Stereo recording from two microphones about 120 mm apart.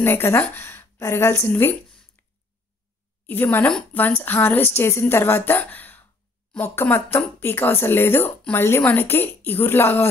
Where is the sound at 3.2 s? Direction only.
15° left (ahead or behind).